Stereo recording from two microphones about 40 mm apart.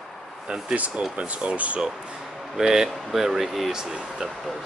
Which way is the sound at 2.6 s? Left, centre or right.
Centre.